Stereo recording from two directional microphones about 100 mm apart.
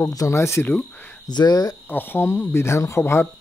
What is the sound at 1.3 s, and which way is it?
Speech, 45° left (ahead or behind).